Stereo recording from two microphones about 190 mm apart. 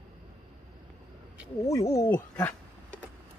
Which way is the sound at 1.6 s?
15° left (ahead or behind).